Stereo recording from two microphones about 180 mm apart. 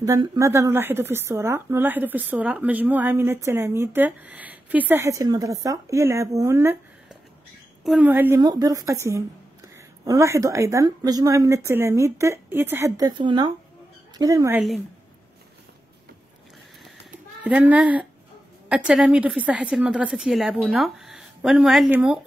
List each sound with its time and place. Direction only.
0.0 s a woman's voice: 20° right (ahead or behind)
7.8 s a woman's voice: centre (ahead or behind)
8.1 s a woman's voice: 10° right (ahead or behind)
8.4 s a woman's voice: 20° right (ahead or behind)
17.4 s a woman's voice: 10° right (ahead or behind)